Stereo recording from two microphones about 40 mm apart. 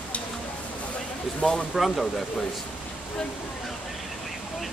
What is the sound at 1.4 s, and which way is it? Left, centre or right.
Speech, left.